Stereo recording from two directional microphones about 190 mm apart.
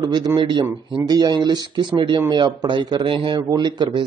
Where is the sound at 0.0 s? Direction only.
20° right (ahead or behind).